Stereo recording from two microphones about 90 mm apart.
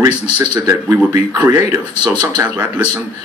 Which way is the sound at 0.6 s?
30° right (ahead or behind).